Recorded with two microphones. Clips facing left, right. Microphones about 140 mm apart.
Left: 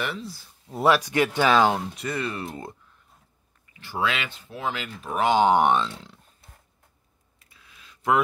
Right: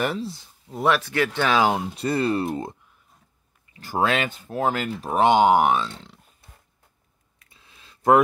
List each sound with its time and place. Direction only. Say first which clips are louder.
0.2 s speech: right 6 dB; 25° right (ahead or behind)
0.7 s speech: left 1 dB; 5° left (ahead or behind)
1.6 s speech: even; 15° right (ahead or behind)
2.0 s speech: right 7 dB; 35° right (ahead or behind)
3.7 s speech: right 5 dB; 45° right (ahead or behind)
5.1 s speech: right 4 dB; 25° right (ahead or behind)
5.4 s speech: right 1 dB; 5° right (ahead or behind)
7.4 s a sound: even; 25° right (ahead or behind)